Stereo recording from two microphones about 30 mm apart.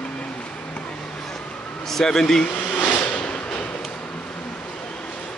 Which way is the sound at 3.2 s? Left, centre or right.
Left.